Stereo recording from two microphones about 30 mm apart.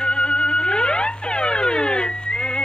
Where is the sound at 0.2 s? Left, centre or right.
Left.